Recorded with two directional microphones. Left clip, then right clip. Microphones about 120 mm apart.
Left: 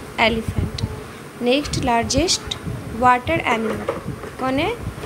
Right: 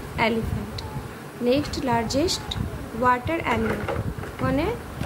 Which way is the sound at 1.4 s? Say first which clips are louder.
Left 4 dB; 10° left (ahead or behind).